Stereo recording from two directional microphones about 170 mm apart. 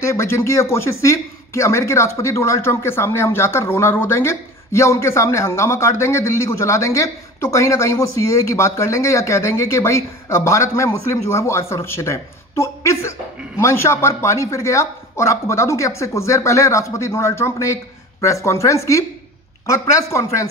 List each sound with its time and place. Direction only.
0.0 s speech: 15° left (ahead or behind)